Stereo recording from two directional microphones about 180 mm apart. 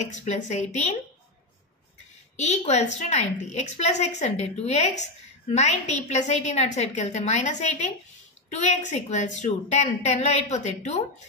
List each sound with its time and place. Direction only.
0.0 s a woman's voice: 40° left (ahead or behind)
2.3 s a woman's voice: 40° left (ahead or behind)